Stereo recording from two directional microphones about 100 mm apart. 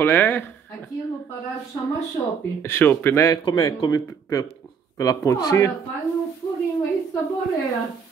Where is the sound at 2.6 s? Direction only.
20° left (ahead or behind).